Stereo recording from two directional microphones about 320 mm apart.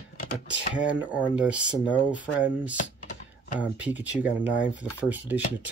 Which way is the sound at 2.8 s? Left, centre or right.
Left.